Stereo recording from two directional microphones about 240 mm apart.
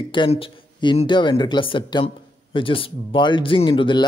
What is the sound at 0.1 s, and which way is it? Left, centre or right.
Speech, left.